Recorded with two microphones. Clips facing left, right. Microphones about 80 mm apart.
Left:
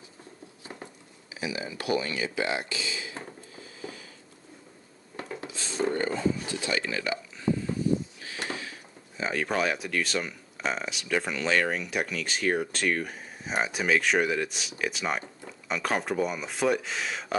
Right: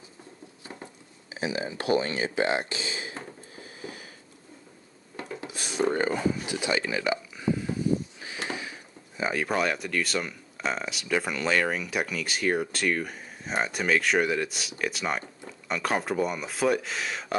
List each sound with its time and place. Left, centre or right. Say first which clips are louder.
1.3 s speech: right 3 dB; right
3.5 s a sound: right 1 dB; right
5.7 s a sound: right 2 dB; centre
6.4 s speech: right 2 dB; centre
8.3 s sniff: right 1 dB; right
9.2 s speech: right 1 dB; centre